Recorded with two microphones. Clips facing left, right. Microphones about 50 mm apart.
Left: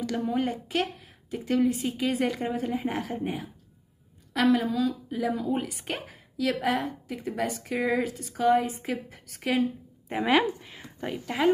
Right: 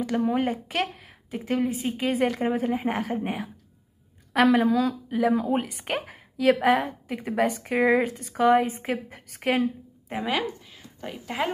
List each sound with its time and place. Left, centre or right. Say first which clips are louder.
0.0 s a woman's voice: right 3 dB; right
4.3 s a woman's voice: right 4 dB; right
10.2 s a woman's voice: left 5 dB; centre
11.1 s speech: left 4 dB; centre